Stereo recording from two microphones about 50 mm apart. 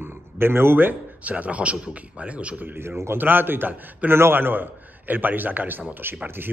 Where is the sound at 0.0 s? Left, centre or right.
Right.